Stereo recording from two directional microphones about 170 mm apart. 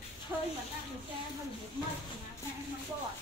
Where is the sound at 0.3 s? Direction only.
15° right (ahead or behind).